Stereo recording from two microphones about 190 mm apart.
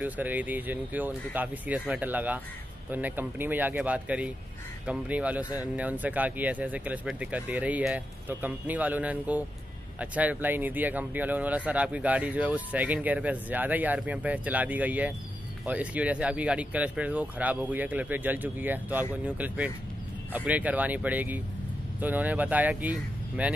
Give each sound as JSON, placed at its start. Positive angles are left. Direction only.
{"t": 0.0, "sound": "speech", "side_deg": -10}